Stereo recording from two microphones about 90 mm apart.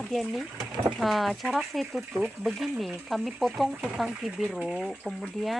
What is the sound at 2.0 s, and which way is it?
Speech, 10° right (ahead or behind).